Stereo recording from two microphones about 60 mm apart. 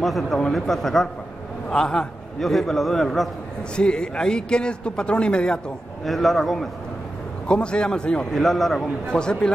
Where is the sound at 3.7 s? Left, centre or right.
Centre.